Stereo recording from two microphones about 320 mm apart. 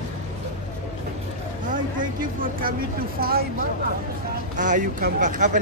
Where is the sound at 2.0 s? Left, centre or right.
Right.